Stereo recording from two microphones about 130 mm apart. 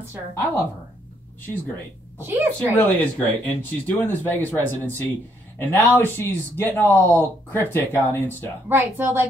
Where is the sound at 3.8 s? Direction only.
15° left (ahead or behind).